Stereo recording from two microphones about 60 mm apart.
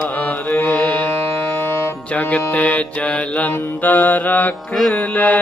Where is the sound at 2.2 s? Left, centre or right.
Left.